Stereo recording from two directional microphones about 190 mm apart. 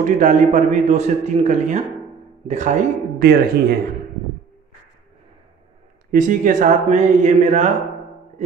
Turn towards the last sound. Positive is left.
turn(degrees=-35)  # may be behind; listen again after turning